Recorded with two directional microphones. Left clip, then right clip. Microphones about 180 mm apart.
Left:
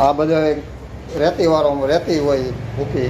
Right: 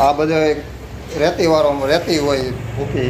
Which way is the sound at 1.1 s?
30° left (ahead or behind).